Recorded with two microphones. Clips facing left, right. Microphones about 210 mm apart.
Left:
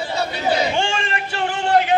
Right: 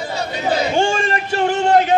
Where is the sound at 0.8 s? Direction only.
40° right (ahead or behind).